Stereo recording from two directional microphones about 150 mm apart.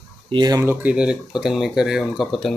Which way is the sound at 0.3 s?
25° right (ahead or behind).